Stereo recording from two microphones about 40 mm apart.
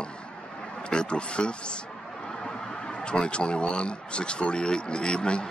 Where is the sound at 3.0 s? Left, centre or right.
Left.